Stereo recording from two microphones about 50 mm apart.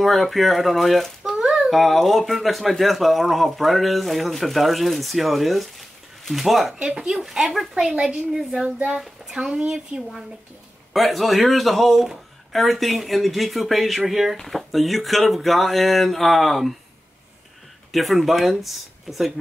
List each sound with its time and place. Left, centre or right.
0.0 s speech: centre
1.2 s a sound: centre
1.8 s speech: centre
7.9 s speech: centre
8.4 s speech: centre
9.5 s speech: right
10.9 s speech: centre
17.9 s speech: centre